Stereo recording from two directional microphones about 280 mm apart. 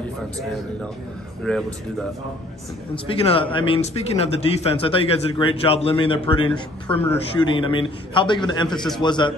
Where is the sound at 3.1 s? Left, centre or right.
Centre.